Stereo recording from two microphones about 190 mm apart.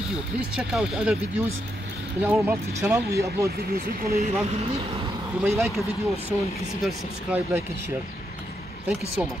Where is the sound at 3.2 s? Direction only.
55° right (ahead or behind); by 5.1 s 30° right (ahead or behind).